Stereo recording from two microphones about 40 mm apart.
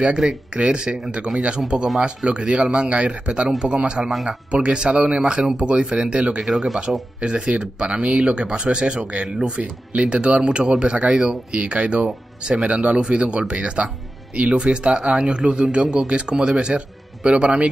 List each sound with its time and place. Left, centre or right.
0.2 s speech: centre
0.8 s speech: centre
6.4 s speech: centre
7.2 s speech: right